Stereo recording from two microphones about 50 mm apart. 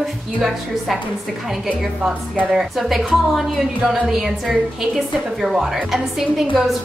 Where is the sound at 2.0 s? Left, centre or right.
Right.